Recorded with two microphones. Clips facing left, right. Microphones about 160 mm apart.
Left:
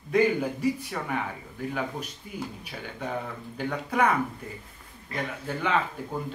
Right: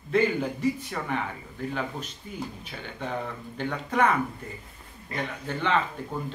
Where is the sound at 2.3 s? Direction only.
10° left (ahead or behind).